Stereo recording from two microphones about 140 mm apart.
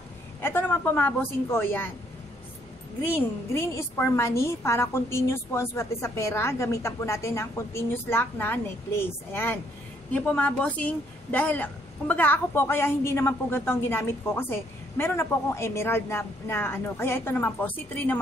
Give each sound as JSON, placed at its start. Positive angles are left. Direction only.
{"t": 0.4, "sound": "a woman's voice", "side_deg": 15}
{"t": 3.1, "sound": "a woman's voice", "side_deg": 20}